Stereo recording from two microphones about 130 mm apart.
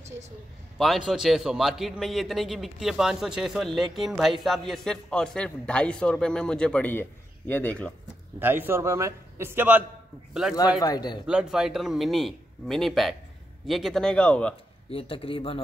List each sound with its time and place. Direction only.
0.7 s a man's voice: centre (ahead or behind)
8.4 s a man's voice: 15° right (ahead or behind)
10.8 s a man's voice: 30° left (ahead or behind)
11.2 s a man's voice: 5° right (ahead or behind)
14.9 s speech: 45° left (ahead or behind)